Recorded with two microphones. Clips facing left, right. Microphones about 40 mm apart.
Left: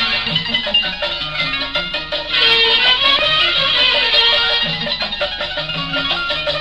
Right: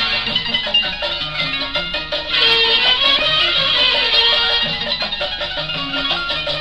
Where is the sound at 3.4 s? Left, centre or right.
Centre.